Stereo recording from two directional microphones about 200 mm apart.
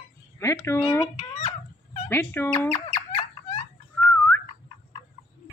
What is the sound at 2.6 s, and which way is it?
Squeak, 30° left (ahead or behind).